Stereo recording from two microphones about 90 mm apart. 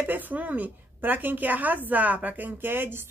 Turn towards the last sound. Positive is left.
turn(degrees=-25)  # may be behind; listen again after turning